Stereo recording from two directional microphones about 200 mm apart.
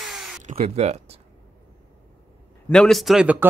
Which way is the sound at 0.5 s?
30° right (ahead or behind).